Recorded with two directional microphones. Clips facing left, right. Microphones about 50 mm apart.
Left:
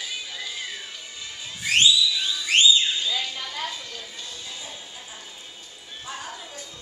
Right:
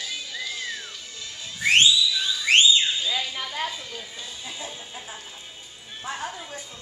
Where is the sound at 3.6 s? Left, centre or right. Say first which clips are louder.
Right 1 dB; centre.